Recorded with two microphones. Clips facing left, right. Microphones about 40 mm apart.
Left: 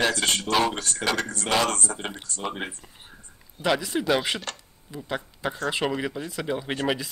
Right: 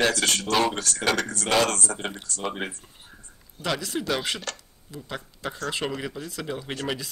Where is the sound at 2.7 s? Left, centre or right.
Left.